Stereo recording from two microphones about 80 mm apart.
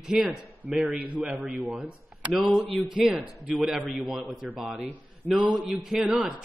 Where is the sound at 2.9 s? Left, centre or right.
Centre.